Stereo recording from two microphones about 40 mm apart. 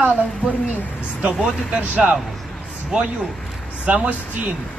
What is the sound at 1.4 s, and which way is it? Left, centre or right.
A man's voice, right.